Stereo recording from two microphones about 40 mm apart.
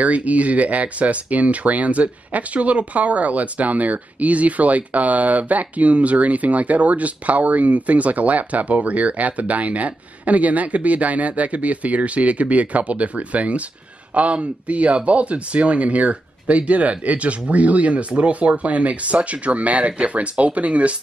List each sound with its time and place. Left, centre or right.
0.0 s speech: right